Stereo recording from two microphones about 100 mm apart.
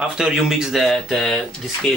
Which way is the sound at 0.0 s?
5° right (ahead or behind).